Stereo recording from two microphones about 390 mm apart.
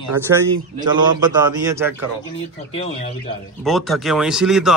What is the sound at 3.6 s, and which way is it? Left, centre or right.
Speech, centre.